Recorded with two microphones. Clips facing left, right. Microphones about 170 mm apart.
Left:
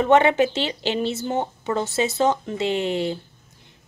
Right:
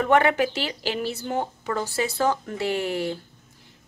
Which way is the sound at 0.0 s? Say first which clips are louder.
Left 3 dB; 20° left (ahead or behind).